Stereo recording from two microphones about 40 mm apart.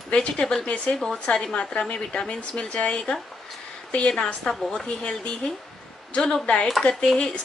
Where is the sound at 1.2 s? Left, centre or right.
Left.